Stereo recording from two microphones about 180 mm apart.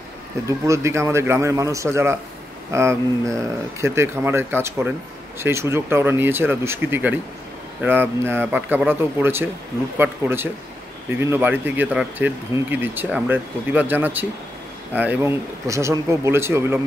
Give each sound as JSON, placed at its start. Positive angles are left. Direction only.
{"t": 0.5, "sound": "speech", "side_deg": -15}